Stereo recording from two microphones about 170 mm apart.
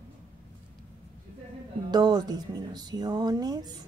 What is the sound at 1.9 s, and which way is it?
Speech, 25° right (ahead or behind).